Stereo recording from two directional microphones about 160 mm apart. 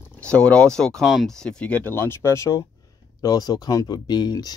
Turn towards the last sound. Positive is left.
turn(degrees=25)  # may be behind; listen again after turning